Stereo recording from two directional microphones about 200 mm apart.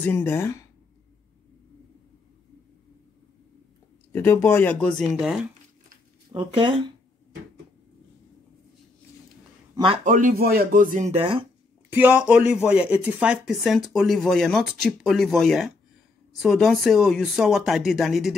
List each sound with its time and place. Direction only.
0.0 s speech: 10° left (ahead or behind)
4.1 s speech: 10° left (ahead or behind); by 5.5 s 5° right (ahead or behind)
6.3 s speech: 25° right (ahead or behind)
10.0 s speech: 40° right (ahead or behind)
11.9 s speech: 10° right (ahead or behind)